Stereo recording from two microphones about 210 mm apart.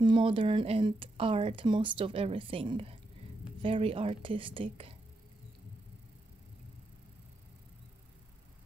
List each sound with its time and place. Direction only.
0.0 s speech: 25° right (ahead or behind)